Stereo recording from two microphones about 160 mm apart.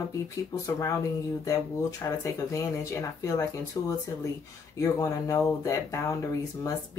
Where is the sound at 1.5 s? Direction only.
20° left (ahead or behind).